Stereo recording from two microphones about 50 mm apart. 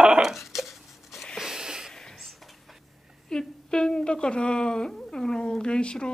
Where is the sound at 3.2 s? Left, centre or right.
Centre.